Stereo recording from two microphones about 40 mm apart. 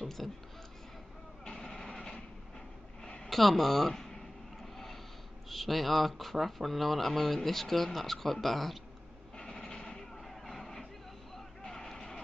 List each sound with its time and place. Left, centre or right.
0.0 s speech: centre
1.4 s vehicle: centre
3.3 s a sound: centre
5.5 s speech: centre
9.4 s vehicle: centre